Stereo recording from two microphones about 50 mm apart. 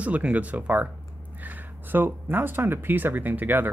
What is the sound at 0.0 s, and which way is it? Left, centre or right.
Speech, right.